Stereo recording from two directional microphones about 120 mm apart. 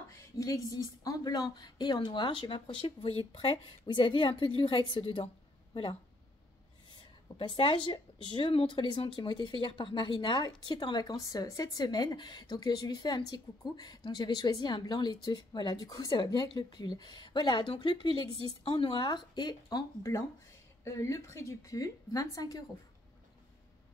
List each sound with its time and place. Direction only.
0.1 s a woman's voice: 30° left (ahead or behind); by 5.3 s 45° left (ahead or behind)
7.3 s speech: 50° left (ahead or behind)
18.6 s a woman's voice: 50° left (ahead or behind); by 22.6 s 30° left (ahead or behind)